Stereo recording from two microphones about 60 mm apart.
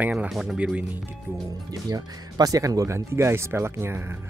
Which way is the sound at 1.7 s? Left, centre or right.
Right.